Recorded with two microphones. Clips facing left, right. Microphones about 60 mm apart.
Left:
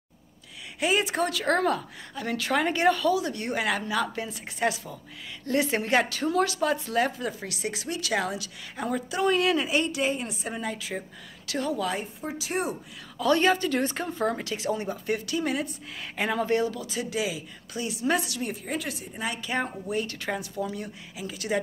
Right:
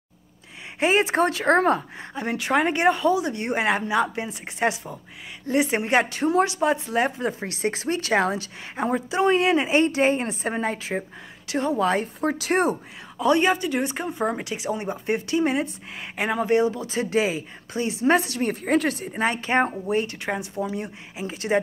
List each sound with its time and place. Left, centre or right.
0.7 s speech: right
11.9 s speech: right
13.2 s speech: centre